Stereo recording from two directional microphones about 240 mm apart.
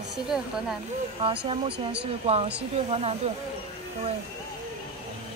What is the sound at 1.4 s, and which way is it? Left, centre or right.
Speech, right.